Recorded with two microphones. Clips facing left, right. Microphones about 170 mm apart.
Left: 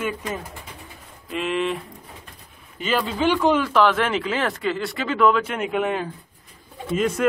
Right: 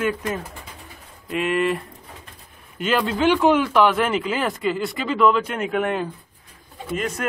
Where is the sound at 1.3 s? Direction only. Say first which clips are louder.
Right 3 dB; 5° right (ahead or behind).